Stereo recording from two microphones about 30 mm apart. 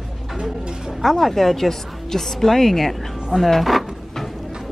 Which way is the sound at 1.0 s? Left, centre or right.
Centre.